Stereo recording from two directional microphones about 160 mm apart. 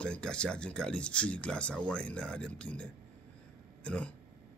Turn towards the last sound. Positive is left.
turn(degrees=10)  # may be behind; listen again after turning